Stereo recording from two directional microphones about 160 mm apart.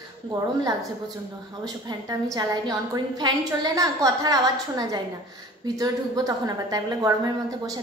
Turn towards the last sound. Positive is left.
turn(degrees=-25)  # may be behind; listen again after turning